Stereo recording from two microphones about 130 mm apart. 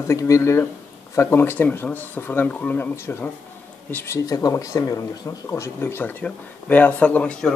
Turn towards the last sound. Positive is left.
turn(degrees=5)  # may be behind; listen again after turning